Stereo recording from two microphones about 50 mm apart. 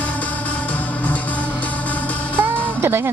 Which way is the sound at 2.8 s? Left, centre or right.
Right.